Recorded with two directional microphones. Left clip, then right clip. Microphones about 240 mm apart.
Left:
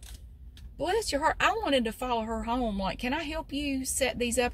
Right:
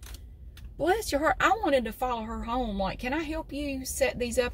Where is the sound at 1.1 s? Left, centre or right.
Centre.